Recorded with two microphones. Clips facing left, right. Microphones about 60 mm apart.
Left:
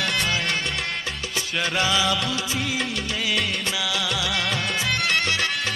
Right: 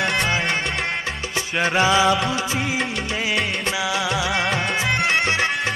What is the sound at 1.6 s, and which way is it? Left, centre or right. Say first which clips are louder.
Music: right 6 dB; right.